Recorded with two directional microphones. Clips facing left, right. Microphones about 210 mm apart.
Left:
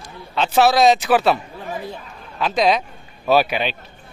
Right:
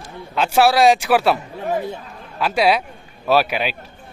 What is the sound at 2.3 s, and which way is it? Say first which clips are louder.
Speech: right 1 dB; 5° right (ahead or behind).